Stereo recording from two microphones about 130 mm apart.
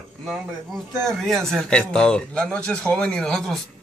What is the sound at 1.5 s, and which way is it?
Speech, 5° left (ahead or behind).